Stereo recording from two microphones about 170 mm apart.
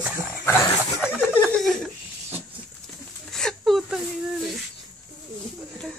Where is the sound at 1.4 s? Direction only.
Centre (ahead or behind).